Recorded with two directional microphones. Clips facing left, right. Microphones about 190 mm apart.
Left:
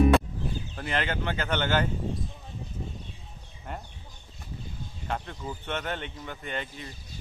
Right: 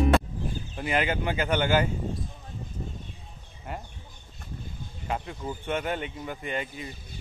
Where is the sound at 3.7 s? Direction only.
5° right (ahead or behind).